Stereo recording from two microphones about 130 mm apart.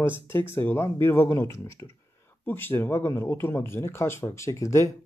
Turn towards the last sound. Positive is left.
turn(degrees=25)  # may be behind; listen again after turning